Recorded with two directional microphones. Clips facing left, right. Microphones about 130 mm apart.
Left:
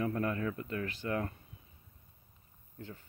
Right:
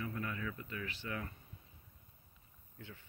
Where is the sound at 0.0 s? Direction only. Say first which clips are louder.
Left 8 dB; 45° left (ahead or behind).